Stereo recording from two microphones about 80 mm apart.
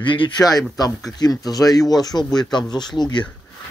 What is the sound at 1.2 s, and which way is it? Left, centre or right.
Speech, left.